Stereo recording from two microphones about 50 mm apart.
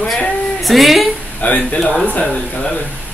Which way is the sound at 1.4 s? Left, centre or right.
Left.